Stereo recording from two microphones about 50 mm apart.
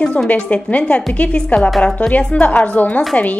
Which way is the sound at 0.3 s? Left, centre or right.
Left.